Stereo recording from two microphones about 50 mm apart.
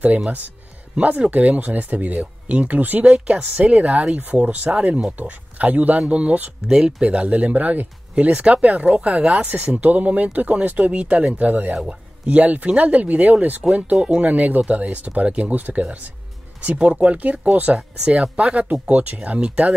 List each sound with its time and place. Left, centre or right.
0.9 s speech: right
6.7 s speech: centre
7.1 s speech: right
11.7 s speech: centre
12.3 s speech: right